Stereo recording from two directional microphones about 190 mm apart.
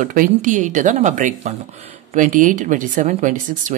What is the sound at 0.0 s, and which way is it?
Speech, 45° right (ahead or behind).